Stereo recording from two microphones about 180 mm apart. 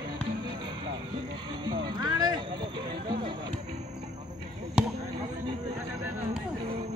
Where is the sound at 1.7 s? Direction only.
25° right (ahead or behind).